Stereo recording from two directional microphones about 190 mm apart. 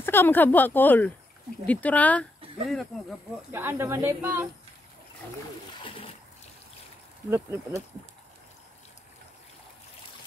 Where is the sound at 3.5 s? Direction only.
10° right (ahead or behind).